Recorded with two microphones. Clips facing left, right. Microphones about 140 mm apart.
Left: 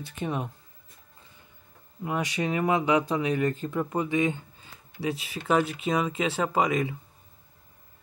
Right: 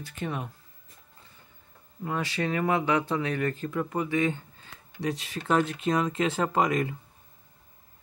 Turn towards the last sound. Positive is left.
turn(degrees=5)  # may be behind; listen again after turning